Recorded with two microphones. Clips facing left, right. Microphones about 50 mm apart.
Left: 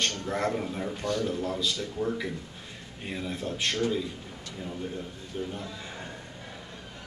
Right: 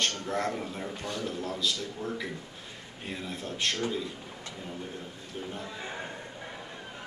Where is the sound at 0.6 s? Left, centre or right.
Centre.